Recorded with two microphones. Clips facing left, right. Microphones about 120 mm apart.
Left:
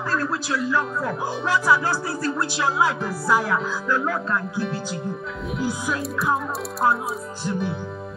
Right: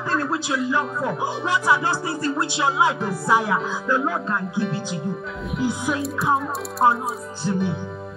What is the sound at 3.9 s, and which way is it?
Speech, 20° right (ahead or behind).